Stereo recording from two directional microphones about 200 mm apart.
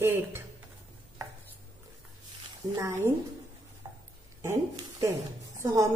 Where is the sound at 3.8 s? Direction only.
20° right (ahead or behind).